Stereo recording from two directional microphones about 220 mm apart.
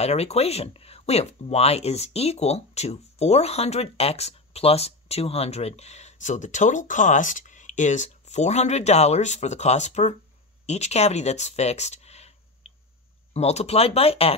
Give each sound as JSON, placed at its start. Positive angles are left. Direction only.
{"t": 0.0, "sound": "speech", "side_deg": 30}